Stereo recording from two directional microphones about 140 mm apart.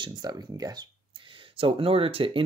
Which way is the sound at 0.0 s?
30° right (ahead or behind).